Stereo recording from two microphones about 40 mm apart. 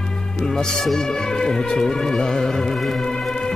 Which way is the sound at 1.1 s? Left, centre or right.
Centre.